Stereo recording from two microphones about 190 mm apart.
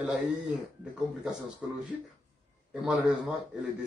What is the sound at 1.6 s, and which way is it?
A man's voice, 5° right (ahead or behind).